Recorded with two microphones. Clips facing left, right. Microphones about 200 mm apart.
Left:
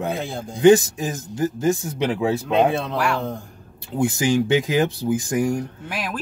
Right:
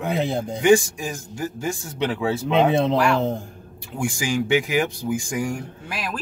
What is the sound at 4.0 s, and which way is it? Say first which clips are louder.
Speech: left 5 dB; 20° left (ahead or behind).